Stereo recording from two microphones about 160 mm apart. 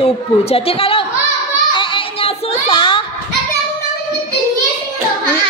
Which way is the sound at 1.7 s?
30° left (ahead or behind).